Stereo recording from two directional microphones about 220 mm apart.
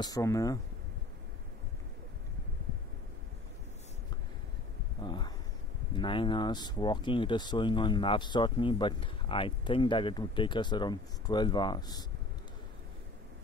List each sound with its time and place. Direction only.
0.0 s speech: 15° left (ahead or behind)
5.0 s speech: 20° left (ahead or behind)